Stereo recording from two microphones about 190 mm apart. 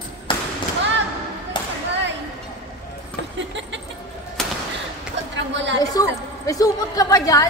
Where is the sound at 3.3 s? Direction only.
70° right (ahead or behind).